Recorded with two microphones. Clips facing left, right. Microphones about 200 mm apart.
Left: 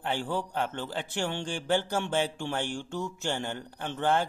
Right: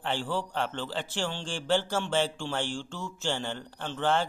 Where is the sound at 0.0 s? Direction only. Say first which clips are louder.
Even; 20° left (ahead or behind).